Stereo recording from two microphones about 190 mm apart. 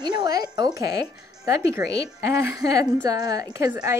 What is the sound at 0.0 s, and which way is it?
Music, 20° right (ahead or behind).